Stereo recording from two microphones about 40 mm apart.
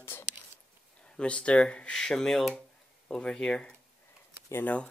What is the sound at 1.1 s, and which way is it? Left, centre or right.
Speech, left.